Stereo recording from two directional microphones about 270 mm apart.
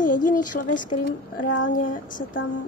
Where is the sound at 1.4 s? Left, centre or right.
Left.